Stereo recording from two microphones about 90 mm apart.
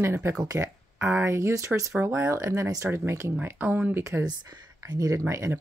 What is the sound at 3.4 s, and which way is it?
Speech, 20° right (ahead or behind).